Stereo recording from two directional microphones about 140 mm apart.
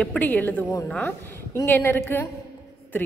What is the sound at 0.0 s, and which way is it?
A woman's voice, 10° left (ahead or behind).